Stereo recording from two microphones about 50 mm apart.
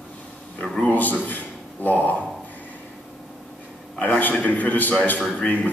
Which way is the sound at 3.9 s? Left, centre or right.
Left.